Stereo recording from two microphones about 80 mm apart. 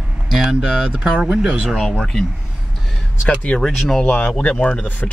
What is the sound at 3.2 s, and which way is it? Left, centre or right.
Speech, centre.